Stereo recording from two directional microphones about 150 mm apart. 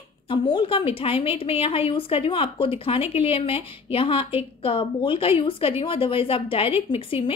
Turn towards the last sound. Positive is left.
turn(degrees=35)  # may be behind; listen again after turning